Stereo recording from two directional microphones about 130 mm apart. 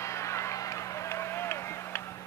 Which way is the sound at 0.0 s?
20° left (ahead or behind).